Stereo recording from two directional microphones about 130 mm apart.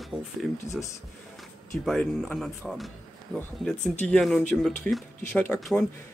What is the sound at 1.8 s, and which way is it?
A man's voice, 5° left (ahead or behind).